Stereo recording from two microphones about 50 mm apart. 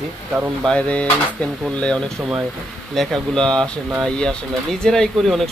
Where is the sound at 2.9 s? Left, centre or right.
Centre.